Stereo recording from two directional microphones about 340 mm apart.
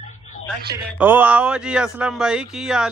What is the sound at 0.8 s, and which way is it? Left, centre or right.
Speech, centre.